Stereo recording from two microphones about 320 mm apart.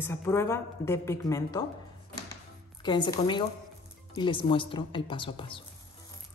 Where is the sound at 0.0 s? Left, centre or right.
Centre.